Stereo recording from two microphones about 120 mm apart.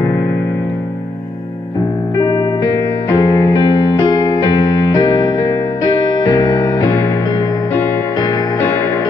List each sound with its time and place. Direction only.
2.1 s music: 35° left (ahead or behind)